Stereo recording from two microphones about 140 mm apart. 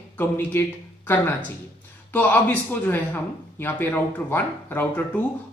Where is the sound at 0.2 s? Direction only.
15° left (ahead or behind).